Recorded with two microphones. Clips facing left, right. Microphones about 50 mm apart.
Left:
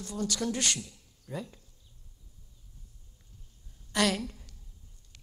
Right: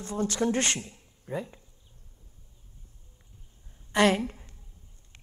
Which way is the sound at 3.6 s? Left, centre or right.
Right.